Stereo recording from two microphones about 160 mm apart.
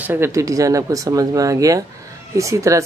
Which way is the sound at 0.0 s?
15° right (ahead or behind).